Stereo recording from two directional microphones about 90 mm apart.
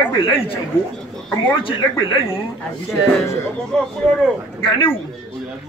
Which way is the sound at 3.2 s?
35° left (ahead or behind).